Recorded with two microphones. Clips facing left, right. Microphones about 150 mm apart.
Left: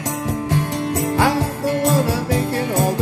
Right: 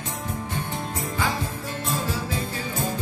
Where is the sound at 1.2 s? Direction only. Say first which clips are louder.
Left 8 dB; 75° left (ahead or behind).